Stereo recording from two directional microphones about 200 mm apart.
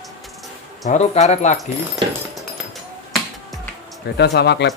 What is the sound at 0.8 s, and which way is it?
Speech, 35° left (ahead or behind).